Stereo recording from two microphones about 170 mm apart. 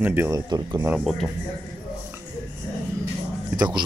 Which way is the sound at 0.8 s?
5° right (ahead or behind).